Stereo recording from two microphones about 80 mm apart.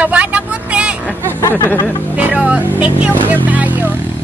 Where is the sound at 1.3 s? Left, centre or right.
Left.